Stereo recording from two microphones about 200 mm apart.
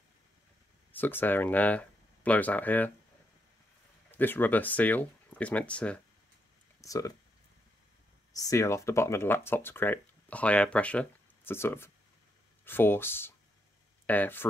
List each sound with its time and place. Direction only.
0.9 s speech: 10° left (ahead or behind)
4.1 s speech: 10° left (ahead or behind)
6.8 s speech: 15° left (ahead or behind)
8.4 s speech: 15° left (ahead or behind)